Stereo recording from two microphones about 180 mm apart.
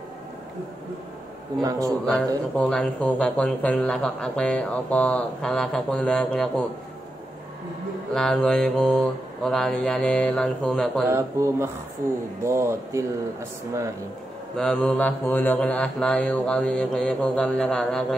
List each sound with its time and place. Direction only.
1.6 s speech: 20° right (ahead or behind)
2.0 s speech: 5° left (ahead or behind)
8.1 s speech: 5° left (ahead or behind)
11.1 s speech: 15° right (ahead or behind)
14.6 s speech: 5° left (ahead or behind)